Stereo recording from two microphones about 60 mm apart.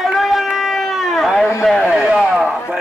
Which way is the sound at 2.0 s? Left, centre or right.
Centre.